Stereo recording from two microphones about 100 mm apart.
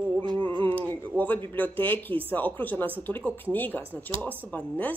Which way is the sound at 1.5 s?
20° left (ahead or behind).